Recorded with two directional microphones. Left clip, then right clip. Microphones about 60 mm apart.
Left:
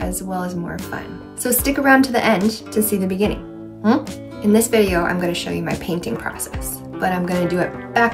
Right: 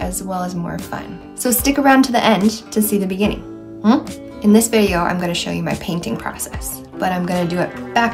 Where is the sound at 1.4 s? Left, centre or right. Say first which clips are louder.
Right 3 dB; right.